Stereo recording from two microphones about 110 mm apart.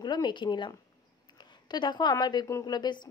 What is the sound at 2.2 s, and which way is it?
Speech, 40° left (ahead or behind).